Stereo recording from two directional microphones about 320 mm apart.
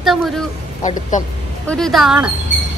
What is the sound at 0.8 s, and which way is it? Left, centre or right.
Speech, left.